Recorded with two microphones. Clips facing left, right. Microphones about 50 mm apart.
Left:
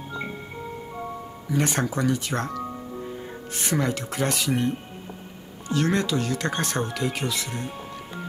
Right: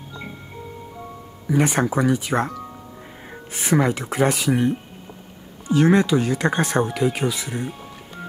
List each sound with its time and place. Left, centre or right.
1.5 s speech: centre